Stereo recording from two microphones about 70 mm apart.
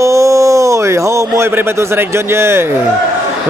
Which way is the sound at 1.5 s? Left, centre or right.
Right.